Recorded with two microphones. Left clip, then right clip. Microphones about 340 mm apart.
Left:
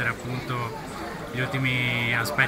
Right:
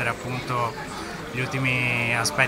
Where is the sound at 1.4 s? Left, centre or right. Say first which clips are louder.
Right 2 dB; right.